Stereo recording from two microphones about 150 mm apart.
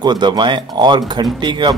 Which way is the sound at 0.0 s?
30° right (ahead or behind).